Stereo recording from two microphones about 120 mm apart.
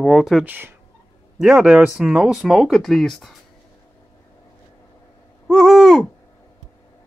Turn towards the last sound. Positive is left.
turn(degrees=0)  # may be behind; listen again after turning